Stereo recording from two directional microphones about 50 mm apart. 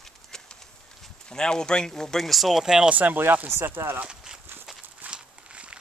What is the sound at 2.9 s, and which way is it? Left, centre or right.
Speech, right.